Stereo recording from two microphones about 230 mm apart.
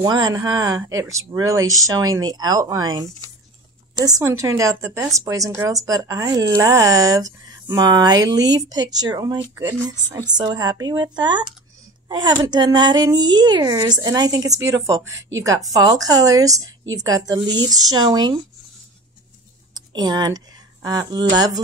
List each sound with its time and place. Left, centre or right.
0.0 s speech: centre
15.0 s speech: right
15.4 s speech: centre
19.7 s speech: centre